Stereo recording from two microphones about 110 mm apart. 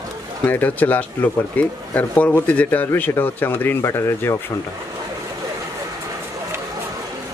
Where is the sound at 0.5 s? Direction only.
15° left (ahead or behind).